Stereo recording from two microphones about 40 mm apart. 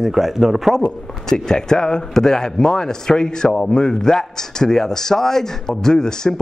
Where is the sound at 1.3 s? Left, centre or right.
Centre.